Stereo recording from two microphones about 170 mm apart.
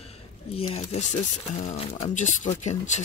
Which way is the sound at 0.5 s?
40° left (ahead or behind).